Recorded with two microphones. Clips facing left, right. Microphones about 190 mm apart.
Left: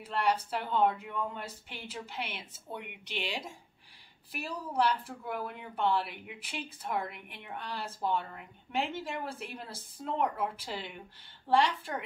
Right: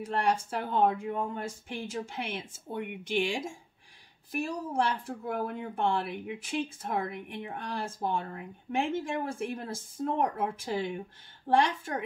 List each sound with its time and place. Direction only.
0.0 s speech: 45° right (ahead or behind)